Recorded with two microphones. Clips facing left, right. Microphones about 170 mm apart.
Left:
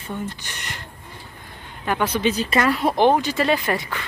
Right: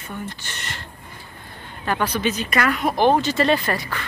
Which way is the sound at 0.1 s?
15° left (ahead or behind).